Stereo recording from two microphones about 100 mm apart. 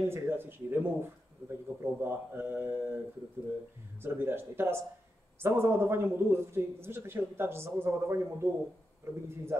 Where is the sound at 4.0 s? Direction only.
20° right (ahead or behind).